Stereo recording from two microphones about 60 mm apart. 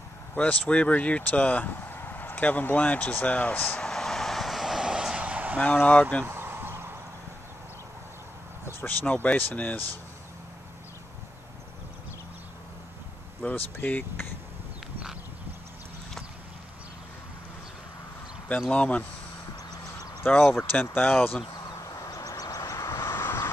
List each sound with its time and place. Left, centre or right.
0.3 s speech: left
3.7 s vehicle: centre; by 5.6 s right
5.6 s speech: left
6.2 s a sound: right
8.8 s speech: left
13.4 s speech: left
18.7 s speech: left
20.2 s speech: left
21.8 s vehicle: left